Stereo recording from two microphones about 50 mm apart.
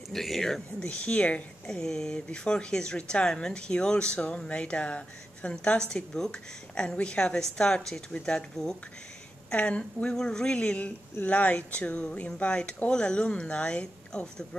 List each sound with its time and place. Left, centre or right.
0.1 s a sound: centre
0.7 s speech: left
1.7 s speech: centre
9.5 s speech: left
11.2 s speech: left